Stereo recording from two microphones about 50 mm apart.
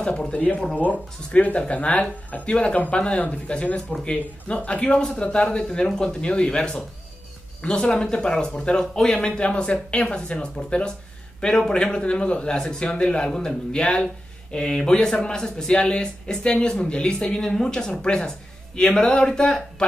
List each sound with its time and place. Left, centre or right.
0.0 s speech: centre
0.3 s speech: left